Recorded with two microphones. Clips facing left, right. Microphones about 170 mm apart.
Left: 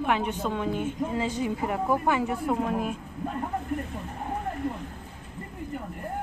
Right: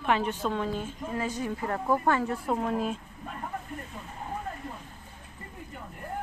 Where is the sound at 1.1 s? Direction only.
20° left (ahead or behind).